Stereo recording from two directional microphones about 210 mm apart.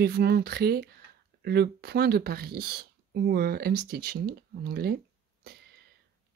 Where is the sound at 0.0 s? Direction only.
50° right (ahead or behind).